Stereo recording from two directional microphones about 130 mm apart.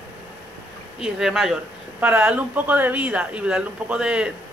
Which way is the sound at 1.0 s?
5° right (ahead or behind).